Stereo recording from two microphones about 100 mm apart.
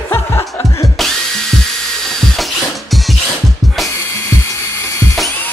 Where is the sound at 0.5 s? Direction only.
30° left (ahead or behind).